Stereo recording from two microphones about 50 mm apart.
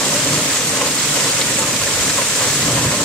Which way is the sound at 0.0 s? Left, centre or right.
Centre.